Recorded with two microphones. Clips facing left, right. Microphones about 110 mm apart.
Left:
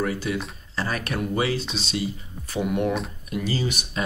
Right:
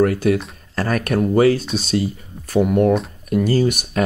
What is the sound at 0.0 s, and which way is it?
Speech, 55° right (ahead or behind).